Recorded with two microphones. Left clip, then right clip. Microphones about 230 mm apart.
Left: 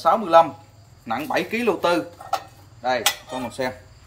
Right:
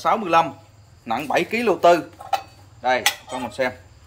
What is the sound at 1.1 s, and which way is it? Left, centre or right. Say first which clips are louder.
Speech: right 2 dB; right.